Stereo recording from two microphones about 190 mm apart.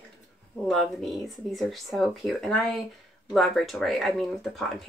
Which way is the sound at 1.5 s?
Centre (ahead or behind).